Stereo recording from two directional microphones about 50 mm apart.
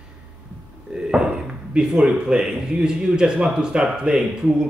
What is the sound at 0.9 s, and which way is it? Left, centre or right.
Speech, centre.